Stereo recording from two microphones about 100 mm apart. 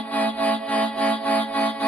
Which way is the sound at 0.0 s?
15° left (ahead or behind).